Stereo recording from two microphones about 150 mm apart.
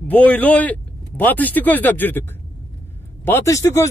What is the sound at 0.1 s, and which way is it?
Speech, 10° left (ahead or behind).